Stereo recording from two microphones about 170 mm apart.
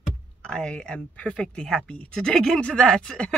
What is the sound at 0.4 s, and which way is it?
Speech, 5° left (ahead or behind).